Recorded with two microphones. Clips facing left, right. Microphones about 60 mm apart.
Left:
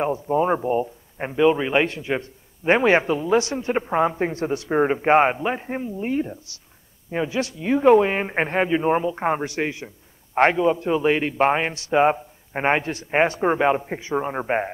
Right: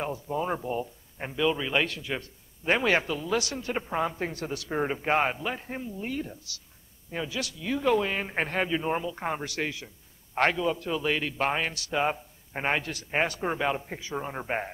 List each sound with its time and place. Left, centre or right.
0.0 s speech: left